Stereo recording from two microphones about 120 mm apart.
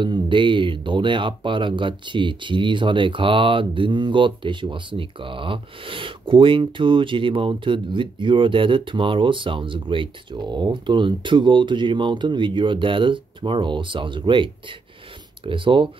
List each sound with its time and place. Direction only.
0.0 s speech: 40° right (ahead or behind)